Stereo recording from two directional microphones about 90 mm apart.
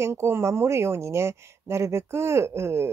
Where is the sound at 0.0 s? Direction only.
30° right (ahead or behind).